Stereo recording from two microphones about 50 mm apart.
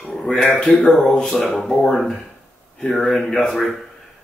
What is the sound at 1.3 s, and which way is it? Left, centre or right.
Speech, left.